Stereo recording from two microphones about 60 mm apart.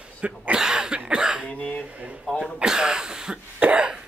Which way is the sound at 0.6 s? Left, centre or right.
Centre.